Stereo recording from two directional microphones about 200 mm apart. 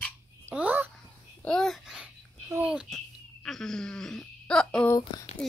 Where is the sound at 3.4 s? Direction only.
Centre (ahead or behind).